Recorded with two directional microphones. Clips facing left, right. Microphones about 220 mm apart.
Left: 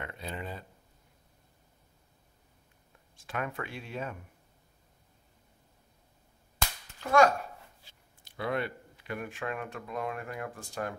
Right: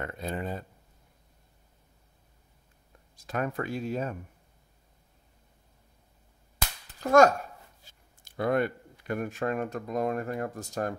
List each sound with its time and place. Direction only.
0.0 s speech: 45° right (ahead or behind)
3.2 s speech: 40° right (ahead or behind)
7.0 s a child's voice: 45° right (ahead or behind)